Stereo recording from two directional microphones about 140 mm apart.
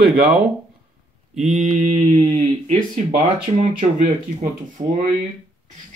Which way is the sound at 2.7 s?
70° right (ahead or behind).